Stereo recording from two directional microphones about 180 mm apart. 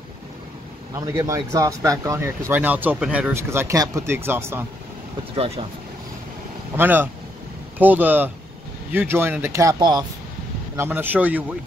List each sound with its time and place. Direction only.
0.9 s speech: 15° right (ahead or behind)
5.3 s speech: 30° right (ahead or behind)
6.8 s speech: 10° right (ahead or behind)
10.8 s speech: 10° right (ahead or behind)